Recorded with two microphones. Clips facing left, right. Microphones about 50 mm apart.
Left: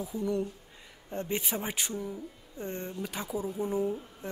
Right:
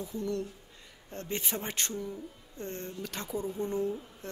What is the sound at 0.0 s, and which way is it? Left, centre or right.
A woman's voice, centre.